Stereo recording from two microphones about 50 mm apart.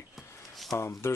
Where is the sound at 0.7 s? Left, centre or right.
Left.